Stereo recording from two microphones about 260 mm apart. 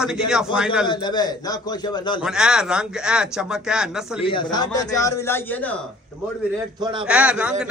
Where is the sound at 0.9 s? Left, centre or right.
Centre.